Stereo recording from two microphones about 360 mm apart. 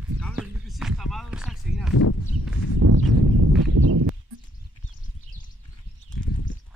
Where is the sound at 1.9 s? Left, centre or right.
Left.